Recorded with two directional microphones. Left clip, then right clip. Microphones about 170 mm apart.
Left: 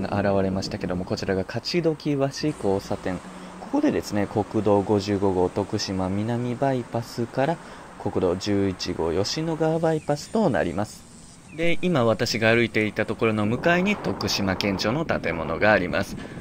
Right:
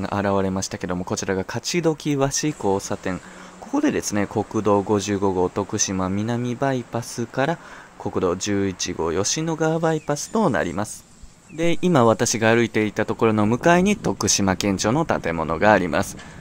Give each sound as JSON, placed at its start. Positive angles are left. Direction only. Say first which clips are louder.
{"t": 0.0, "sound": "speech", "louder": "right 1 dB", "side_deg": -10}
{"t": 11.5, "sound": "speech", "louder": "right 4 dB", "side_deg": -30}